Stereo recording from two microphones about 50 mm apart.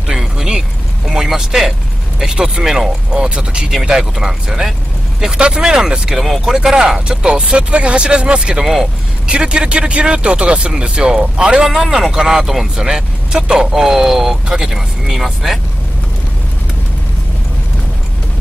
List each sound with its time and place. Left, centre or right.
0.0 s vehicle: centre
2.3 s speech: centre
6.1 s speech: centre
11.6 s speech: centre